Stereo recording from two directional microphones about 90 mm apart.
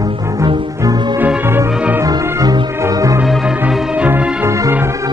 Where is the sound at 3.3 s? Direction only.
5° right (ahead or behind).